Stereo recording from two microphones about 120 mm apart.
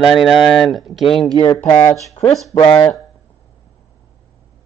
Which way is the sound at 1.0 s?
50° left (ahead or behind).